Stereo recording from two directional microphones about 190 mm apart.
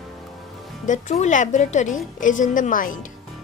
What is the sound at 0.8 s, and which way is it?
A woman's voice, 40° left (ahead or behind).